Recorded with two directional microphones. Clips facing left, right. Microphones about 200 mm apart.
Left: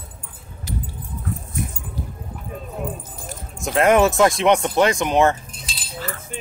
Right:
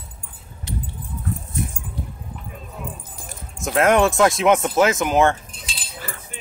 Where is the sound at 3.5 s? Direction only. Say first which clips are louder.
Left 1 dB; centre (ahead or behind).